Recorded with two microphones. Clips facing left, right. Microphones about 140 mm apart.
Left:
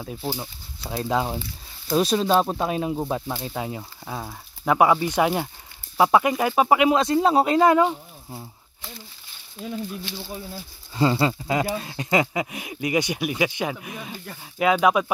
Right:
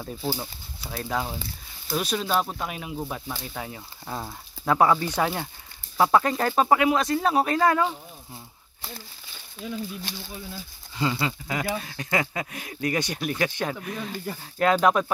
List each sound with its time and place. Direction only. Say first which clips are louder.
0.0 s speech: even; 5° left (ahead or behind)
0.4 s speech: left 1 dB; 20° left (ahead or behind)
4.0 s speech: right 3 dB; centre (ahead or behind)
4.6 s speech: left 2 dB; 15° left (ahead or behind)
6.9 s speech: left 4 dB; 25° left (ahead or behind)
10.5 s speech: left 2 dB; 35° left (ahead or behind); by 15.1 s 5° left (ahead or behind)